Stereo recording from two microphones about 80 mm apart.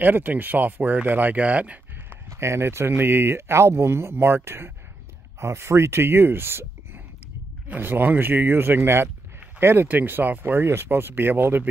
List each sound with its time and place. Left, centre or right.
0.0 s speech: right
2.2 s speech: right